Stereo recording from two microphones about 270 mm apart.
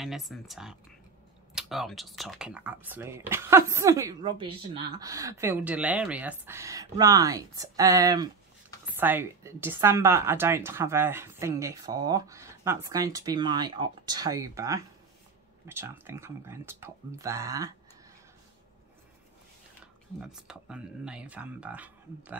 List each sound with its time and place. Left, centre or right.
0.0 s speech: centre
20.2 s speech: centre